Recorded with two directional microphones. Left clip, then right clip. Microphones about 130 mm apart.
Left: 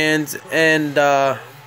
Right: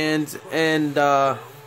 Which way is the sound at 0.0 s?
Centre (ahead or behind).